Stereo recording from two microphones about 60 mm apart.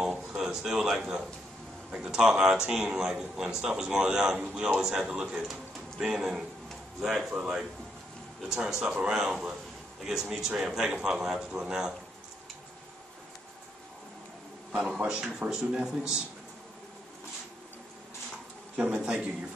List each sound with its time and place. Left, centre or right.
0.0 s a man's voice: centre
14.7 s a man's voice: centre
18.8 s a man's voice: centre